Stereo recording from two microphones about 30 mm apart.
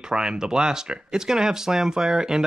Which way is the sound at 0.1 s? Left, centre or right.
Right.